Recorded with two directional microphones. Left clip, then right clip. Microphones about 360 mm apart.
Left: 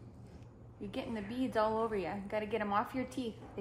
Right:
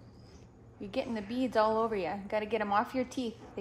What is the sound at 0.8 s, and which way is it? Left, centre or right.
A woman's voice, right.